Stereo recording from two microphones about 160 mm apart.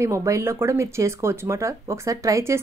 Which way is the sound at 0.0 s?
20° right (ahead or behind).